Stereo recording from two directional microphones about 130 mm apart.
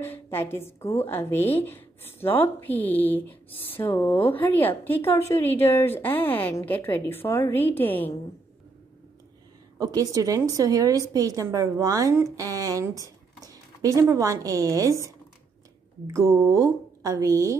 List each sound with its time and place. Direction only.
0.0 s a woman's voice: 15° left (ahead or behind)
9.8 s a woman's voice: 25° right (ahead or behind)
16.1 s a woman's voice: 20° right (ahead or behind)